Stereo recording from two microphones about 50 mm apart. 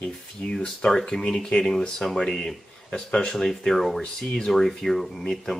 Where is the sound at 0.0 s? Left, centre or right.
Centre.